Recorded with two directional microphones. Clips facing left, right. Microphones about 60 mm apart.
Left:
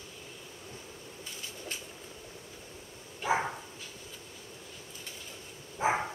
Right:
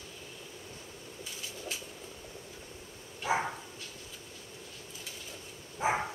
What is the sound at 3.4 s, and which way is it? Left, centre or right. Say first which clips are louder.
Dog: left 1 dB; centre.